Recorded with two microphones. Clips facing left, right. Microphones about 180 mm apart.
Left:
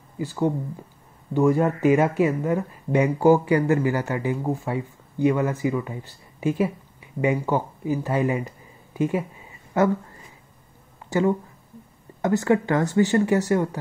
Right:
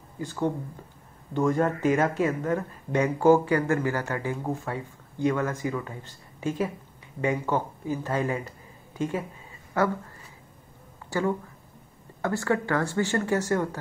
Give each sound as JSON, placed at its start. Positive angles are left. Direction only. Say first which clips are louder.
{"t": 0.2, "sound": "speech", "louder": "left 4 dB", "side_deg": 10}
{"t": 11.1, "sound": "speech", "louder": "left 5 dB", "side_deg": 20}